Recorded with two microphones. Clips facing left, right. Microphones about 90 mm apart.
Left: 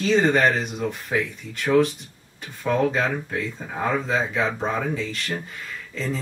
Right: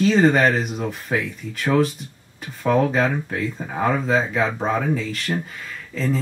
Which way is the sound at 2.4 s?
5° right (ahead or behind).